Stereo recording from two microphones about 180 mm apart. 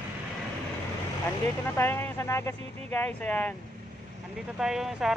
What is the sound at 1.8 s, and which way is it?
Speech, 15° left (ahead or behind).